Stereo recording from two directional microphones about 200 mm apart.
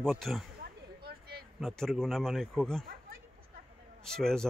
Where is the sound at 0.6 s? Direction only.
50° right (ahead or behind).